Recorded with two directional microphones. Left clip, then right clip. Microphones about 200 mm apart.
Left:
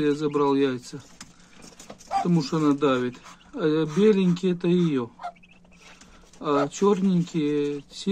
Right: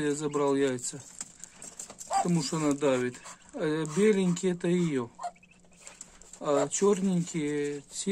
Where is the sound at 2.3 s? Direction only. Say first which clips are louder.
Left 6 dB; 10° right (ahead or behind).